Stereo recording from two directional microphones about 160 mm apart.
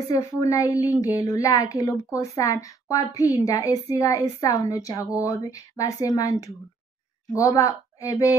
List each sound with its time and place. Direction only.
0.1 s a woman's voice: 20° left (ahead or behind)